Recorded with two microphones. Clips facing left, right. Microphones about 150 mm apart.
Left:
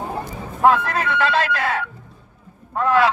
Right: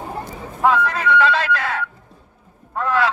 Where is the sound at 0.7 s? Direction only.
55° left (ahead or behind).